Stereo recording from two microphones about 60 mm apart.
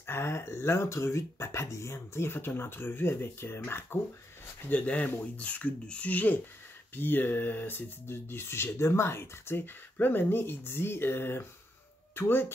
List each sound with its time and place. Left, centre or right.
0.0 s speech: left
4.6 s speech: left